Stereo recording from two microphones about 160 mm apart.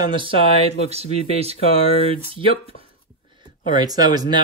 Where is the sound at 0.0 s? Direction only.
30° right (ahead or behind).